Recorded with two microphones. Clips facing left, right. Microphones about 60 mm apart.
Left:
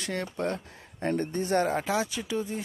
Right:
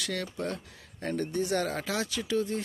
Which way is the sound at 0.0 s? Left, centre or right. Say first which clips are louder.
Left 3 dB; left.